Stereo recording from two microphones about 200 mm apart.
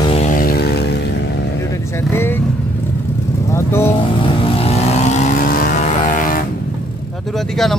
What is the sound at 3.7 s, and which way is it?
Speech, 10° left (ahead or behind).